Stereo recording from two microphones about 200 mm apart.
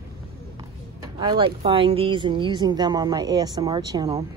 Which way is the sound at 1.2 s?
20° right (ahead or behind).